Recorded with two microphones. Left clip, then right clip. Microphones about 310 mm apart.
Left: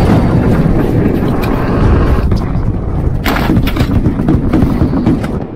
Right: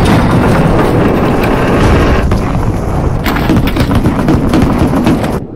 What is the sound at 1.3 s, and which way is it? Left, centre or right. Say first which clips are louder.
Vehicle: right 5 dB; right.